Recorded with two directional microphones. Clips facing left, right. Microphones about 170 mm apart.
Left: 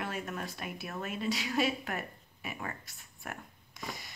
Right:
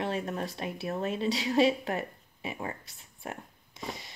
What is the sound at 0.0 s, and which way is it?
A woman's voice, 30° right (ahead or behind).